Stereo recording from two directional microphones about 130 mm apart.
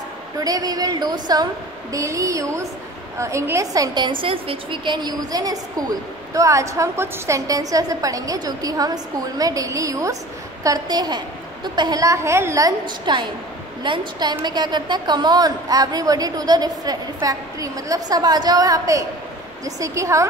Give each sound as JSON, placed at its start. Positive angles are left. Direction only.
{"t": 0.4, "sound": "a woman's voice", "side_deg": -30}